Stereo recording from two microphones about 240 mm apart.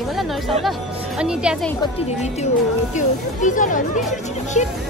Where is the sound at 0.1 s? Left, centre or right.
Centre.